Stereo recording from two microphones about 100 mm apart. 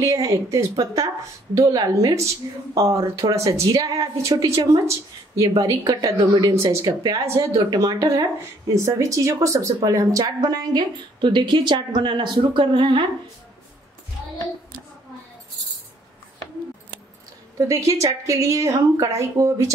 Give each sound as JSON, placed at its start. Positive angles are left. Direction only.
{"t": 0.0, "sound": "speech", "side_deg": -35}
{"t": 6.9, "sound": "speech", "side_deg": -45}
{"t": 17.6, "sound": "speech", "side_deg": -30}